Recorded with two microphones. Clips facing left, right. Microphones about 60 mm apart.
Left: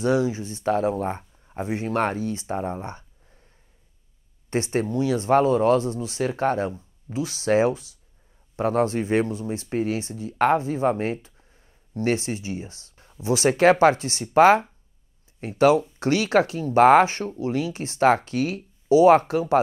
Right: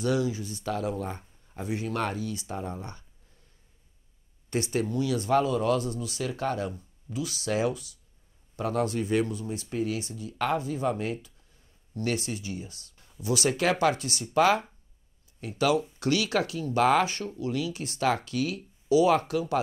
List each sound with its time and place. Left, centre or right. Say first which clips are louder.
0.0 s speech: left 5 dB; left
4.5 s speech: left 4 dB; left